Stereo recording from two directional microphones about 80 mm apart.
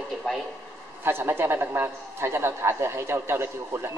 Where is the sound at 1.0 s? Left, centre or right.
Right.